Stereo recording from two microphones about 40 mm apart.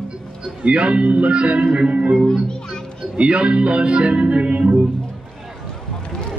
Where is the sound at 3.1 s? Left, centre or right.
Right.